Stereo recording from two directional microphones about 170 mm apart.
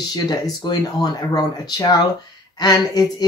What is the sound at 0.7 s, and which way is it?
Speech, 25° left (ahead or behind).